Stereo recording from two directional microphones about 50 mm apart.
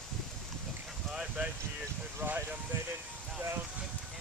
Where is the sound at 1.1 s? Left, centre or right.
Centre.